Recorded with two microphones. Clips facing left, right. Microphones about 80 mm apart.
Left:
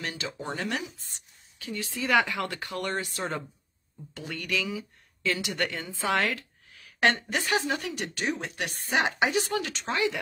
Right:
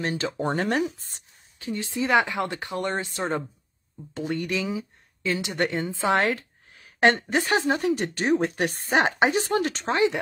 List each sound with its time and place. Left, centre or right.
0.0 s a woman's voice: right
0.4 s a woman's voice: right
1.6 s a woman's voice: right